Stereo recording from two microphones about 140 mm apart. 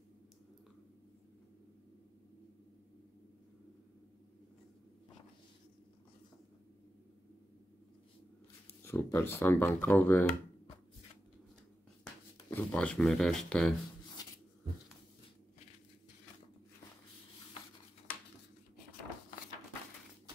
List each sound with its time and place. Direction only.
8.6 s speech: 15° left (ahead or behind)
12.4 s speech: 10° left (ahead or behind)